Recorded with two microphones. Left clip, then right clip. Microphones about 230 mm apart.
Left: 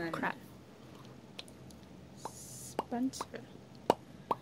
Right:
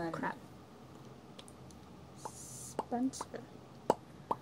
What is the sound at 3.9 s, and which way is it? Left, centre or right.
Plop, left.